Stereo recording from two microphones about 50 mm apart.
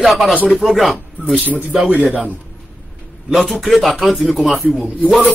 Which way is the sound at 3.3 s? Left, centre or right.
Centre.